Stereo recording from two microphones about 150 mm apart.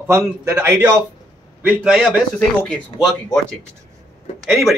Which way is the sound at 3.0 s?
25° left (ahead or behind).